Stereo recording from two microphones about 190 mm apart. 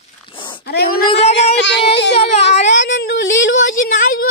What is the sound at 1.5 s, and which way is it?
Child singing, 70° left (ahead or behind).